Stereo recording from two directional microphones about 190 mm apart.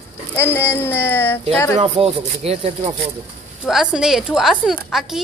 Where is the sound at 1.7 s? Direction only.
30° right (ahead or behind).